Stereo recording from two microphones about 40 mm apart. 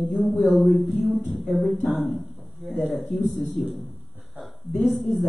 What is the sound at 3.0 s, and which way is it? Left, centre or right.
Speech, right.